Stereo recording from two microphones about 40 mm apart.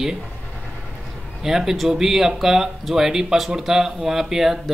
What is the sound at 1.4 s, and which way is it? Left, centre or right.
Speech, centre.